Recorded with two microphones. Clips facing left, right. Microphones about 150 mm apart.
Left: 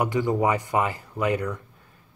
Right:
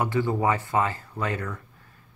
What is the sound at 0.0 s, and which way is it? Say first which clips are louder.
Speech: left 2 dB; 15° left (ahead or behind).